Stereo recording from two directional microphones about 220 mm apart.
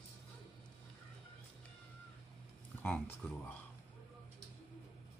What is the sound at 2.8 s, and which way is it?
Speech, 5° left (ahead or behind).